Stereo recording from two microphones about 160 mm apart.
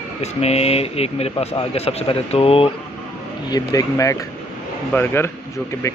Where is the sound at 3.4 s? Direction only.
25° left (ahead or behind).